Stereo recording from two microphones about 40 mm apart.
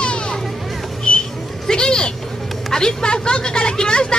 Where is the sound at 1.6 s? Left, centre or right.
Centre.